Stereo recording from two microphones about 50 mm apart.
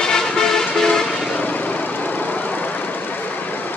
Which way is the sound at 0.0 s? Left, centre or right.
Centre.